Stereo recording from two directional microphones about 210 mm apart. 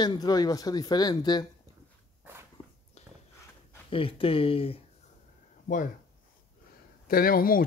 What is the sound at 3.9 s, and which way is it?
Speech, 25° left (ahead or behind).